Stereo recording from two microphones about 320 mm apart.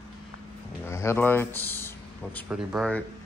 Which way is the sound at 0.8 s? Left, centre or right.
Centre.